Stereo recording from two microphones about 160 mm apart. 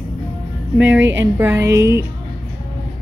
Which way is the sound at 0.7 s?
10° right (ahead or behind).